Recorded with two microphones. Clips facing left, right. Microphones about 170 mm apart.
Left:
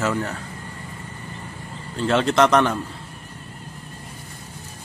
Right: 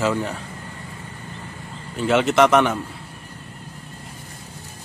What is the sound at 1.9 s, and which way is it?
Speech, 10° right (ahead or behind).